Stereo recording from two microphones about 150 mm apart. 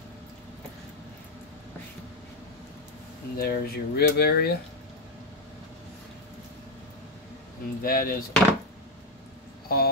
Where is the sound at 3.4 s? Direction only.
90° left.